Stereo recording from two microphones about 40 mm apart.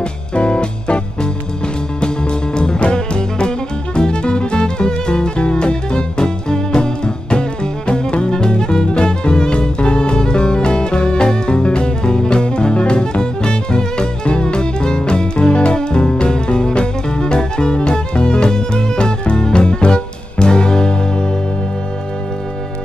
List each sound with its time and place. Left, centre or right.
0.3 s music: left